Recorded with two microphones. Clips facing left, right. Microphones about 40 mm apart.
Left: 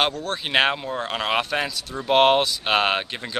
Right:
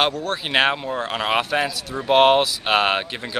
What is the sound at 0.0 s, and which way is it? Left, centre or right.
A man's voice, centre.